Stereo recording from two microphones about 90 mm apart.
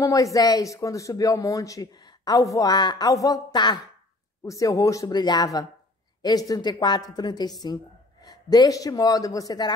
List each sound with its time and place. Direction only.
0.0 s speech: 40° left (ahead or behind)
5.1 s speech: 50° left (ahead or behind)